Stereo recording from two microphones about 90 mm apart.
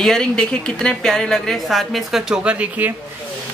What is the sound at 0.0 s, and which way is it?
A woman's voice, 5° left (ahead or behind).